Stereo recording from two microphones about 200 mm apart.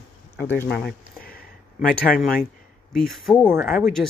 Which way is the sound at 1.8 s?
45° left (ahead or behind).